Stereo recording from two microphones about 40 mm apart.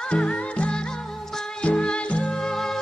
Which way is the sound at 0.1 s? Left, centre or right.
Left.